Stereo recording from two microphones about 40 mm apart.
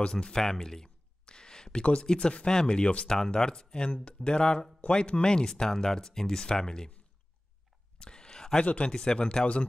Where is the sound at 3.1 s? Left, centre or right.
Centre.